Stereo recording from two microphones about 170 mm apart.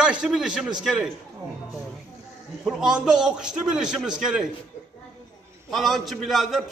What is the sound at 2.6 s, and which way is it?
A man's voice, 5° right (ahead or behind).